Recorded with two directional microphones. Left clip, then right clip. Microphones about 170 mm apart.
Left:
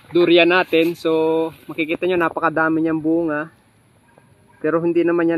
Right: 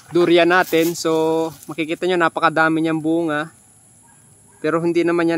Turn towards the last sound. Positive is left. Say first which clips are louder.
# even
turn(degrees=-25)  # may be behind; listen again after turning